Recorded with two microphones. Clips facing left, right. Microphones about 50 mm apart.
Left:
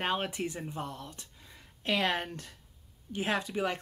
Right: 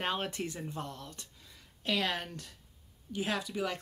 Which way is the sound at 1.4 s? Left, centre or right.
Left.